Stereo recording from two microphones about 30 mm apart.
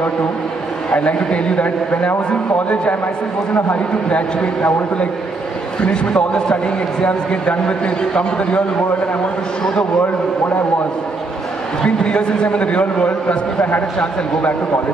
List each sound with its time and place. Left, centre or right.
0.9 s a man's voice: left
5.8 s a man's voice: left
11.8 s a man's voice: left